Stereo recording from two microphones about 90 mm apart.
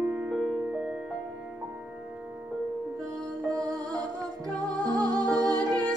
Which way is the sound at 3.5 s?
45° right (ahead or behind).